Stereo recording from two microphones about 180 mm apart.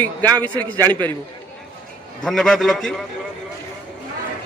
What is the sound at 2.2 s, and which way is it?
Speech, centre (ahead or behind).